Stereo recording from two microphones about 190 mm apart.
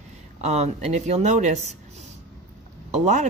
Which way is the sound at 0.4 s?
35° right (ahead or behind).